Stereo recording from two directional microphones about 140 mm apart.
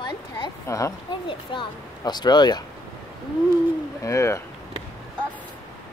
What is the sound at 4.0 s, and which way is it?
Speech, 20° left (ahead or behind).